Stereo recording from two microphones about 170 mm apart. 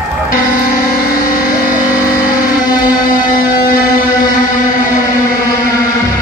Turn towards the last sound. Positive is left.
turn(degrees=60)  # may be behind; listen again after turning